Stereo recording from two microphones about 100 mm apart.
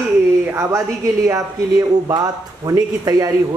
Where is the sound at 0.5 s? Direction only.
30° right (ahead or behind).